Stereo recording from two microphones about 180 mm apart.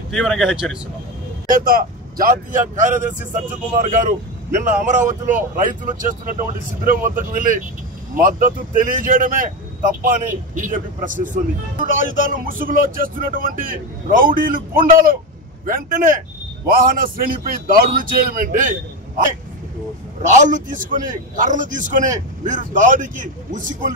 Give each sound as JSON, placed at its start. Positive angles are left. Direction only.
{"t": 0.1, "sound": "speech", "side_deg": 0}
{"t": 1.5, "sound": "speech", "side_deg": -50}
{"t": 20.2, "sound": "speech", "side_deg": -45}